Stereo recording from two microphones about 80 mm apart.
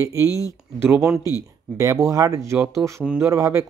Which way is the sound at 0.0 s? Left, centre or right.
Right.